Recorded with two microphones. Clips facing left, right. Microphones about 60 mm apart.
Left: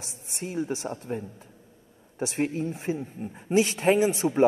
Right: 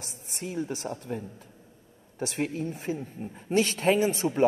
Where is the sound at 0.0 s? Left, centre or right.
Right.